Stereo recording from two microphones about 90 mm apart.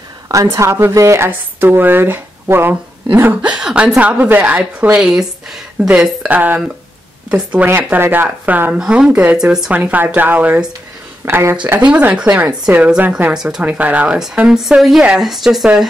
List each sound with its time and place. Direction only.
0.3 s a woman's voice: 35° right (ahead or behind)
3.5 s speech: 10° right (ahead or behind)
5.9 s speech: 15° right (ahead or behind)
9.7 s a woman's voice: 20° right (ahead or behind)
11.2 s a woman's voice: 30° right (ahead or behind)
11.8 s speech: 15° right (ahead or behind)
13.3 s speech: 5° right (ahead or behind)
13.7 s speech: 15° right (ahead or behind); by 15.0 s centre (ahead or behind)
15.0 s speech: 15° right (ahead or behind)
15.2 s speech: centre (ahead or behind)